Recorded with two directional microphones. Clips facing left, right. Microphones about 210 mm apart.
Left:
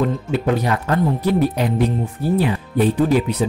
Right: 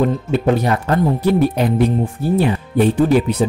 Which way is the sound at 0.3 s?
30° right (ahead or behind).